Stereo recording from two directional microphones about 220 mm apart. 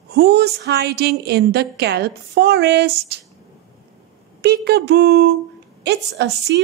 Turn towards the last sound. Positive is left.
turn(degrees=-50)  # may be behind; listen again after turning